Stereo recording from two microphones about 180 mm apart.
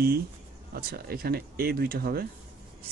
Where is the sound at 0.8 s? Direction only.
60° right (ahead or behind).